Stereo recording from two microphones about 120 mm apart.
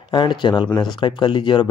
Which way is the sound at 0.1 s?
40° left (ahead or behind).